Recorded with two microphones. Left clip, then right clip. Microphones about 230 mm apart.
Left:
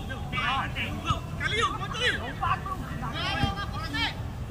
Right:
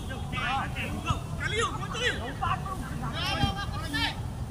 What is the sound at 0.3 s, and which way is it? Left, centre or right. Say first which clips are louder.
Vehicle: left 2 dB; centre.